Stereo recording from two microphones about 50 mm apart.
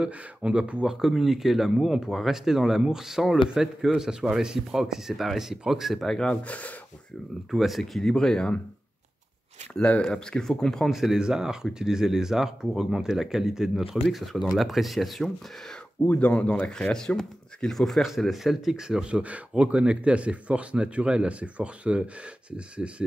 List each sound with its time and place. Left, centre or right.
0.0 s speech: right
0.8 s speech: centre
6.0 s speech: centre
6.4 s speech: left
7.5 s speech: centre
9.8 s speech: left
10.0 s speech: centre
10.9 s speech: centre
16.1 s speech: left; by 18.0 s centre
18.0 s speech: centre
19.2 s speech: right
22.8 s speech: centre